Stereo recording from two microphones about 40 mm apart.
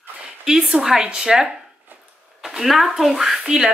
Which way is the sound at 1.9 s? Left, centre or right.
Right.